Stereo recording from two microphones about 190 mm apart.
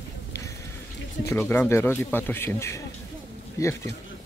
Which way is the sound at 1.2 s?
10° left (ahead or behind).